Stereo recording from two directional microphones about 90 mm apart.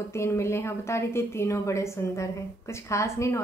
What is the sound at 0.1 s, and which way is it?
A woman's voice, 30° left (ahead or behind).